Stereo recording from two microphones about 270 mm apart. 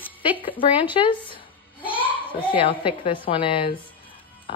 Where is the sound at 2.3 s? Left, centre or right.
Centre.